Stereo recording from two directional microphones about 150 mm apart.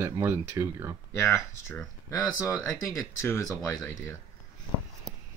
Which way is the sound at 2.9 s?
15° left (ahead or behind).